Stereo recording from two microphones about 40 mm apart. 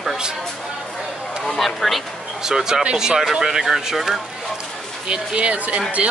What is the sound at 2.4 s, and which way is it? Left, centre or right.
Speech, centre.